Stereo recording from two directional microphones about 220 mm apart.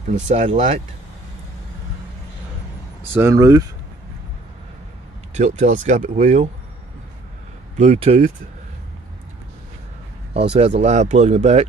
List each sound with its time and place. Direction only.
0.1 s speech: 30° right (ahead or behind)
3.0 s speech: 10° right (ahead or behind)
5.3 s speech: 30° right (ahead or behind)
7.7 s speech: 30° right (ahead or behind)
10.3 s speech: 30° right (ahead or behind)